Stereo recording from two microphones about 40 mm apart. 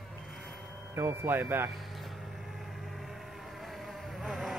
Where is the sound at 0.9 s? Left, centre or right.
Right.